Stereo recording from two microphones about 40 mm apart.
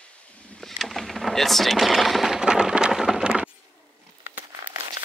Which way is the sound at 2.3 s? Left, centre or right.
Centre.